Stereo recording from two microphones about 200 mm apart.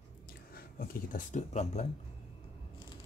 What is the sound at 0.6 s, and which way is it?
Speech, 45° left (ahead or behind).